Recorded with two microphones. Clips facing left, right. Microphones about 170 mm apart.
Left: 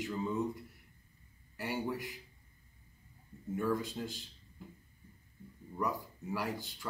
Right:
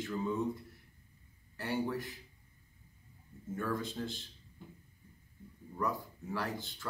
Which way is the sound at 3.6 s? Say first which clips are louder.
Left 3 dB; 15° left (ahead or behind).